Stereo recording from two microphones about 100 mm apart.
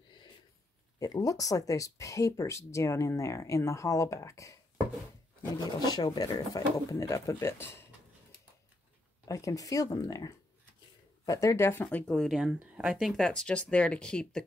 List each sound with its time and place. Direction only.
0.9 s speech: 40° left (ahead or behind)
5.5 s speech: 45° left (ahead or behind); by 7.8 s 25° left (ahead or behind)
9.3 s speech: 35° left (ahead or behind)
12.1 s speech: centre (ahead or behind)
12.4 s speech: 10° right (ahead or behind)
13.1 s speech: 5° left (ahead or behind)